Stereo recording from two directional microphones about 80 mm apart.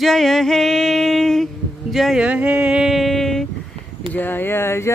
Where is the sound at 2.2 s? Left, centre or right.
Centre.